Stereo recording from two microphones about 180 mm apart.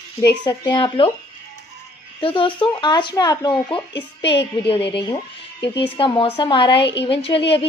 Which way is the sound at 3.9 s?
80° left.